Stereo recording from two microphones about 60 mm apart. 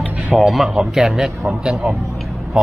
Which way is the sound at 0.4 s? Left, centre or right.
Centre.